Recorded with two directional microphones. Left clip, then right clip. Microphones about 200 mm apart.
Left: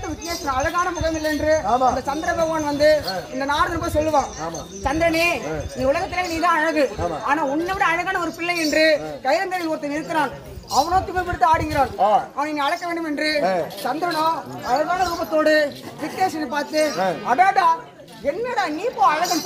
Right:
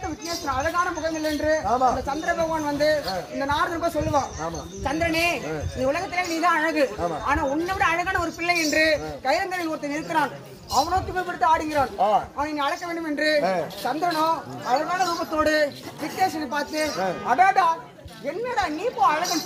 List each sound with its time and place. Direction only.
0.3 s speech: centre (ahead or behind); by 4.2 s 20° left (ahead or behind)
4.8 s a man's voice: 10° left (ahead or behind)